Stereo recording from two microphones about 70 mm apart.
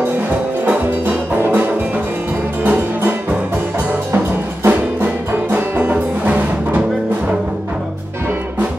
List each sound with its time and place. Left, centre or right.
1.3 s music: right
4.6 s music: right